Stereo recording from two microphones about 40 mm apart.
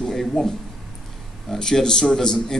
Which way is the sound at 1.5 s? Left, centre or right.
Centre.